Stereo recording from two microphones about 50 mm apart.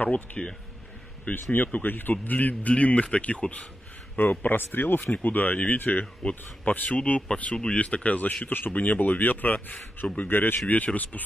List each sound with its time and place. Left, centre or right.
0.0 s speech: left
1.5 s speech: left
4.2 s speech: left
8.5 s speech: left
10.7 s speech: left